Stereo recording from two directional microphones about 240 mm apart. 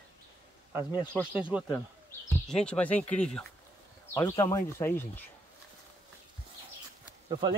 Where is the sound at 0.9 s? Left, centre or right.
Centre.